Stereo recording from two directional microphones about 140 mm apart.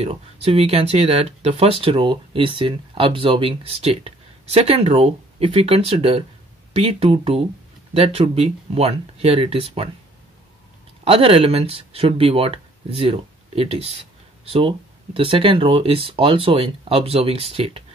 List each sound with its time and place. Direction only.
0.0 s speech: 45° right (ahead or behind)
11.1 s speech: 45° right (ahead or behind)